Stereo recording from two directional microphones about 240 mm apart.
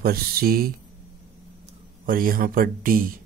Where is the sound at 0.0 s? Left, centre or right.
Right.